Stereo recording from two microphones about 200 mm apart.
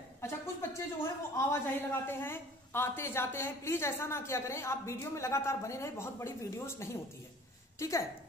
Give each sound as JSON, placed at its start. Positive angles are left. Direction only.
{"t": 0.2, "sound": "speech", "side_deg": 15}